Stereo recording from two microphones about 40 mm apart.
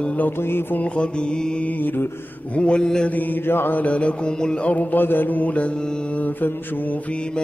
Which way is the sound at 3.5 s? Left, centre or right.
Left.